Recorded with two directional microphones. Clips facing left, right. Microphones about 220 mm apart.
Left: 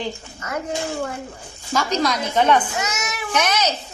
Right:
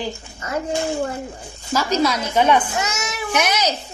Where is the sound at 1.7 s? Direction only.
5° right (ahead or behind).